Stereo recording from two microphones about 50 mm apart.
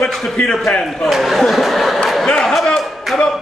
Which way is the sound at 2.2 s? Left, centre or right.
Centre.